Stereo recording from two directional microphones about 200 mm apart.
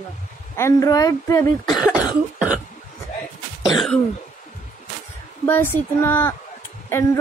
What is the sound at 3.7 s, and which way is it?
Throat clearing, centre (ahead or behind).